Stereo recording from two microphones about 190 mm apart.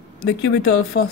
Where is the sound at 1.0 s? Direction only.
60° left (ahead or behind).